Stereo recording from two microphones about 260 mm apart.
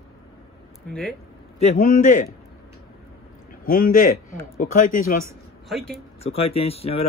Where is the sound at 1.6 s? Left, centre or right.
Left.